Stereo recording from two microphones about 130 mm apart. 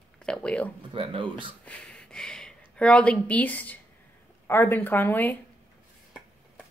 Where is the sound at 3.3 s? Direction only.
10° left (ahead or behind).